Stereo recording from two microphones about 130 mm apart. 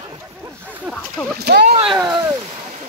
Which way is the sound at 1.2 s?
10° left (ahead or behind).